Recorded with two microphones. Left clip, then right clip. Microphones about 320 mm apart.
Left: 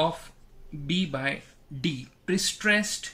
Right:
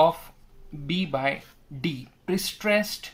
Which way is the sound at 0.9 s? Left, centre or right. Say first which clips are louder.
Right 3 dB; centre.